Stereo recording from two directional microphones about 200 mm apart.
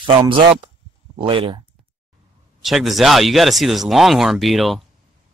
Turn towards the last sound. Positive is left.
turn(degrees=0)  # may be behind; listen again after turning